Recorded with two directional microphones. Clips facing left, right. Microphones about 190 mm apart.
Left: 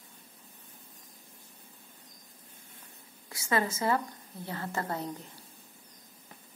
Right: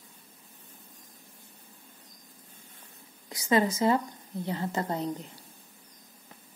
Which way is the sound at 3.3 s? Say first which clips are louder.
Right 5 dB; 20° right (ahead or behind).